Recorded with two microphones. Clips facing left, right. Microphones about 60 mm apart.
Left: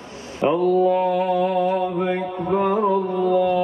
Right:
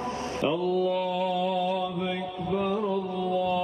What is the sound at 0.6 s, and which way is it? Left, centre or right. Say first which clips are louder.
Mantra: left 8 dB; left.